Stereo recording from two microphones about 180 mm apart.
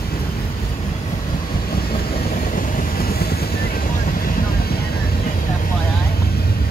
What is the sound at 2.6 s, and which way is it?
Vehicle, 55° left (ahead or behind).